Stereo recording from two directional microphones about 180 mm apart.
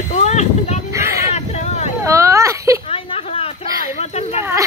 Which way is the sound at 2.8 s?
30° left (ahead or behind).